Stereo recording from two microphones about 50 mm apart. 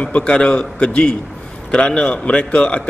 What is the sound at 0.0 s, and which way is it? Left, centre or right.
A man's voice, left.